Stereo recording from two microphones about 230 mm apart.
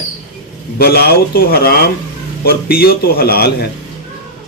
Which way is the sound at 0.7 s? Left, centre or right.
Left.